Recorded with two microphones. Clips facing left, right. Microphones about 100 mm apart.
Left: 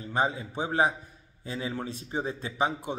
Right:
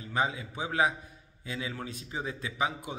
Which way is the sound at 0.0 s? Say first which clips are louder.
Left 3 dB; 35° left (ahead or behind).